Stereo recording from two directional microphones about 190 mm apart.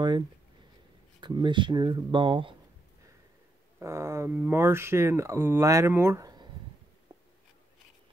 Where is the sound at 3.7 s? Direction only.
15° right (ahead or behind).